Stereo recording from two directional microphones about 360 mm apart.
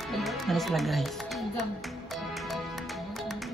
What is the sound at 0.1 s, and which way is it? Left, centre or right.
Speech, centre.